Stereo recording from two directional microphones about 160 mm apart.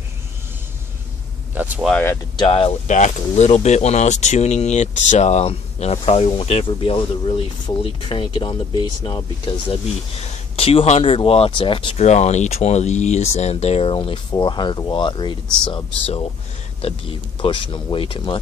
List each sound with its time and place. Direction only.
1.5 s speech: 10° right (ahead or behind)
1.9 s speech: 10° left (ahead or behind)
2.3 s speech: 35° left (ahead or behind)